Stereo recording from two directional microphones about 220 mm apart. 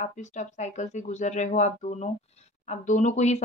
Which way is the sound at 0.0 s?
35° left (ahead or behind).